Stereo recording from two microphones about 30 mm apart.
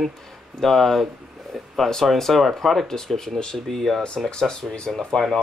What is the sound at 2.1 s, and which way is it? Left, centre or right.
Speech, centre.